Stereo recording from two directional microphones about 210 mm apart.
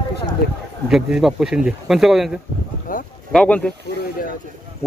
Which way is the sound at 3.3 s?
5° left (ahead or behind).